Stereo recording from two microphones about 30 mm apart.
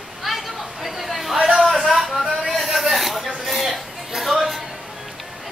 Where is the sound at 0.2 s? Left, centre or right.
Centre.